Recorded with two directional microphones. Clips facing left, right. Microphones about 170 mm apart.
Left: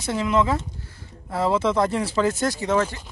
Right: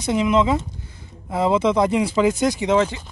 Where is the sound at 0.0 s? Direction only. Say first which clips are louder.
Right 3 dB; 15° right (ahead or behind).